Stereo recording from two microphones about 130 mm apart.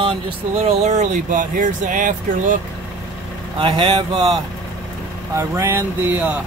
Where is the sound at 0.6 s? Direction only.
60° right (ahead or behind); by 2.6 s 80° right.